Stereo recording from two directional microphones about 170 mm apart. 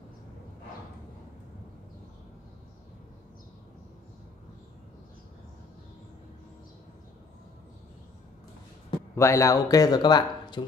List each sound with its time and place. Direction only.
9.1 s speech: 15° left (ahead or behind)